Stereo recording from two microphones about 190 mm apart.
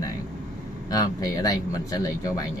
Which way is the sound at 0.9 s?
20° left (ahead or behind).